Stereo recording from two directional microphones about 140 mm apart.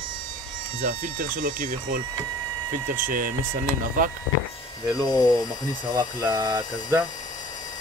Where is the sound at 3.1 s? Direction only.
75° right (ahead or behind).